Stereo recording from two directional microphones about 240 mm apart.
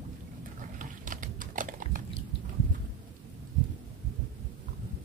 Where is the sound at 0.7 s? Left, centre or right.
Right.